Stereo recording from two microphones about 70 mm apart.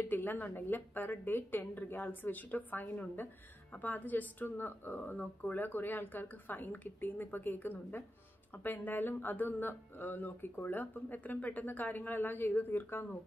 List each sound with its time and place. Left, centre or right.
0.0 s speech: left